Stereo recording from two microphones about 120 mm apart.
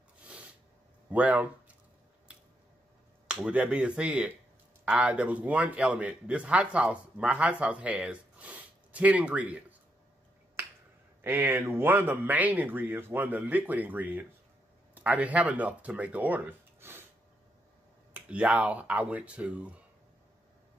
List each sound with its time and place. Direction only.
0.2 s a sound: 10° right (ahead or behind)
1.1 s a man's voice: 10° right (ahead or behind)
3.3 s a man's voice: 10° right (ahead or behind)
11.2 s a man's voice: 15° right (ahead or behind)
18.1 s a man's voice: 10° right (ahead or behind)